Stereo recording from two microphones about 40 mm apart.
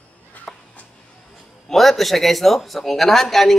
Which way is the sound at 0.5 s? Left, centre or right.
Left.